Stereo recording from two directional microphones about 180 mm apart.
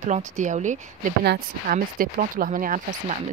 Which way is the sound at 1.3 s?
50° right (ahead or behind).